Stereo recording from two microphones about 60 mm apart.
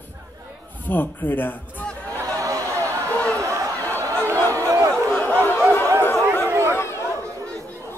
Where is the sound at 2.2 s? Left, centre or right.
Right.